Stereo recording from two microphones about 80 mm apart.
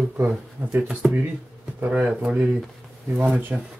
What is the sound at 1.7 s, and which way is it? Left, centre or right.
Speech, centre.